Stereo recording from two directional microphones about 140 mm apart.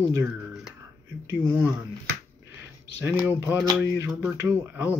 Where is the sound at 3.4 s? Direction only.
15° right (ahead or behind).